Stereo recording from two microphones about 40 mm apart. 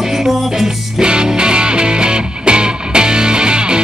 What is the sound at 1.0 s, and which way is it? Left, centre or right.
Music, right.